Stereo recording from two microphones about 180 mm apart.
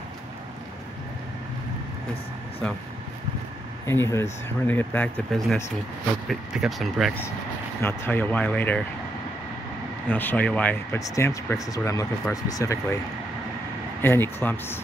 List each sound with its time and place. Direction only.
3.8 s speech: 15° left (ahead or behind)
7.8 s speech: 10° left (ahead or behind)
10.0 s speech: 10° left (ahead or behind)
14.0 s speech: 10° left (ahead or behind)